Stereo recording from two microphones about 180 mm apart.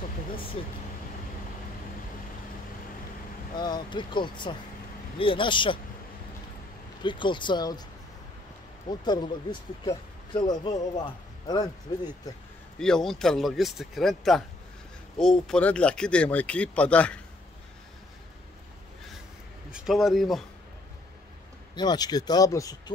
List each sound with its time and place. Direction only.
0.6 s speech: 30° left (ahead or behind)
3.5 s speech: 25° left (ahead or behind)
7.0 s speech: 25° left (ahead or behind)
8.8 s speech: 25° left (ahead or behind)
12.7 s speech: 5° left (ahead or behind)
19.7 s speech: 5° right (ahead or behind)
21.7 s speech: 20° left (ahead or behind)